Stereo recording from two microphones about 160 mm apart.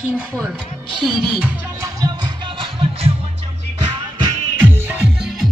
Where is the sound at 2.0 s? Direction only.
25° right (ahead or behind).